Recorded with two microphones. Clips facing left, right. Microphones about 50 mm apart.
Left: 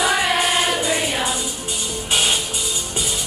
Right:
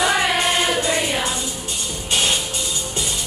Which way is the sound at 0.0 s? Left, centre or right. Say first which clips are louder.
Even; centre.